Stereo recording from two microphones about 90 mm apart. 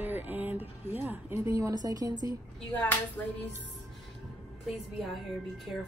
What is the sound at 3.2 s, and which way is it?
Music, 20° left (ahead or behind).